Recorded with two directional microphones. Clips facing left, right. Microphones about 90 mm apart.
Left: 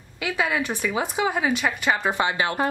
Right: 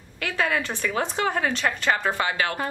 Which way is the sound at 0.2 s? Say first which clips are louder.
Left 1 dB; 15° left (ahead or behind).